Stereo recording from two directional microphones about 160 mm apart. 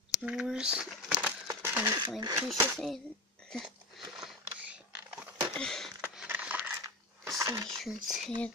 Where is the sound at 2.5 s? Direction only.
15° right (ahead or behind).